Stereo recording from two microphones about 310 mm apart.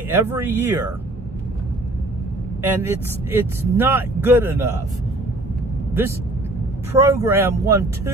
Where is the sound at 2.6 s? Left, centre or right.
Centre.